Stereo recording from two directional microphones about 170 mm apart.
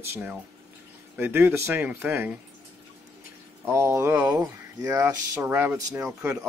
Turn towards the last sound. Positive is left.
turn(degrees=-10)  # may be behind; listen again after turning